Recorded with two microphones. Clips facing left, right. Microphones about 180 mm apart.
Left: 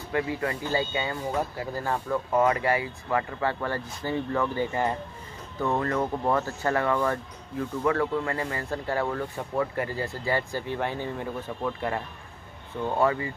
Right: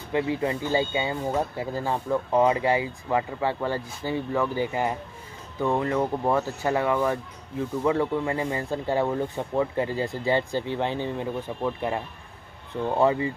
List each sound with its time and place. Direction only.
0.1 s speech: 20° right (ahead or behind)
13.0 s speech: 20° right (ahead or behind)